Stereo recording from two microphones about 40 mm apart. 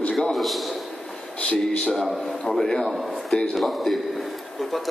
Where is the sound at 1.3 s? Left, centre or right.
Left.